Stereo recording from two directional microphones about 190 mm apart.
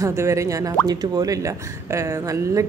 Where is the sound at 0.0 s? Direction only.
15° right (ahead or behind).